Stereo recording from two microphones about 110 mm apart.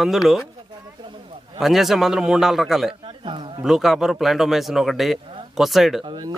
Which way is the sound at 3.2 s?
50° right (ahead or behind).